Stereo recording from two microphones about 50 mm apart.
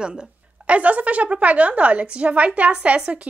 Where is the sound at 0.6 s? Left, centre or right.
Right.